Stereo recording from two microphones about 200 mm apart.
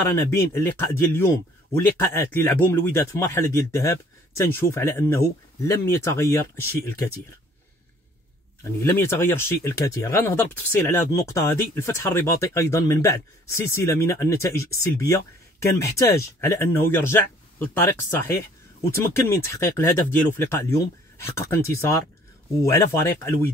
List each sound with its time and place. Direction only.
0.1 s a man's voice: 15° left (ahead or behind)
8.6 s a man's voice: 15° left (ahead or behind)